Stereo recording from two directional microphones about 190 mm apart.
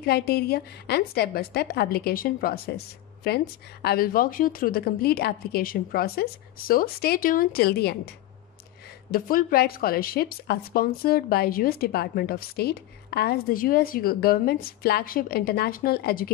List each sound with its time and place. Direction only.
0.0 s a woman's voice: 55° left (ahead or behind)
9.1 s a woman's voice: 50° left (ahead or behind)